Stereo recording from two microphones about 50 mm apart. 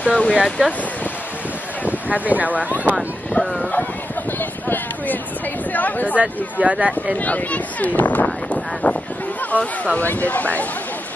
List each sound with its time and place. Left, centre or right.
0.0 s speech: centre
0.3 s speech: centre
1.9 s speech: right
3.3 s speech: centre
4.4 s a sound: left
5.7 s speech: left
6.1 s speech: right
7.2 s speech: left
8.8 s a sound: left
9.5 s speech: left